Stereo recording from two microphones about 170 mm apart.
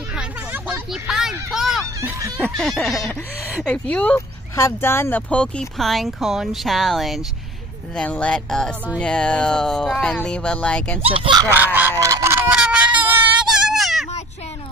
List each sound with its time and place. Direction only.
0.1 s a sound: 5° right (ahead or behind)
1.5 s hubbub: centre (ahead or behind)
2.0 s snicker: 20° right (ahead or behind)
2.5 s speech: centre (ahead or behind)
11.0 s speech: 35° right (ahead or behind)
11.5 s speech: 10° right (ahead or behind)
12.0 s a sound: 15° right (ahead or behind)
13.5 s baby cry: 5° right (ahead or behind)